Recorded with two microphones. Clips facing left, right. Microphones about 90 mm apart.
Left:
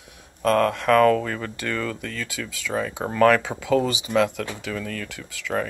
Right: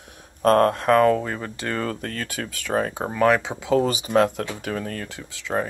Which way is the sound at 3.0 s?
10° right (ahead or behind).